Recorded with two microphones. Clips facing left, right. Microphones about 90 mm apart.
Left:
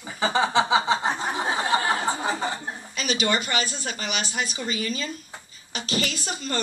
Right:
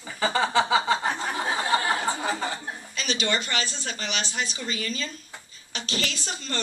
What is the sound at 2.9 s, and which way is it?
A woman's voice, 5° left (ahead or behind).